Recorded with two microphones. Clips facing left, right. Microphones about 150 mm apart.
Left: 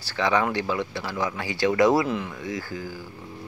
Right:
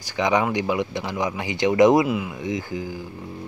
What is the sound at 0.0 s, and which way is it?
Speech, 15° right (ahead or behind).